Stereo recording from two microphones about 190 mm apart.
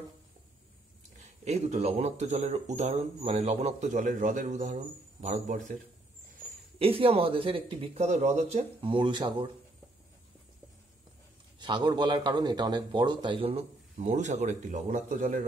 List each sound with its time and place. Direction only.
1.1 s speech: 35° right (ahead or behind)
11.6 s speech: 25° right (ahead or behind); by 15.4 s 45° right (ahead or behind)